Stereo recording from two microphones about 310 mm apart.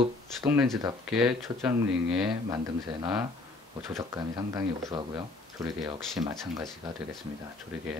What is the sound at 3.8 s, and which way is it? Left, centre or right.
Speech, centre.